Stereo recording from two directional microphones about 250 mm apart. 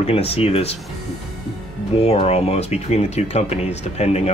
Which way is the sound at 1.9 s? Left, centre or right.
Left.